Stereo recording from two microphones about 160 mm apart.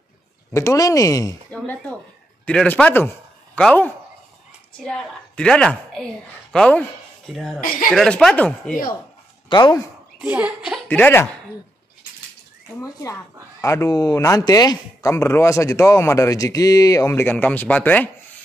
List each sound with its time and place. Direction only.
0.5 s speech: 20° left (ahead or behind)
1.5 s a man's voice: 10° left (ahead or behind)
9.5 s speech: 25° left (ahead or behind)
10.1 s a woman's voice: 10° right (ahead or behind)
10.9 s a man's voice: 10° left (ahead or behind)
12.8 s speech: 20° left (ahead or behind)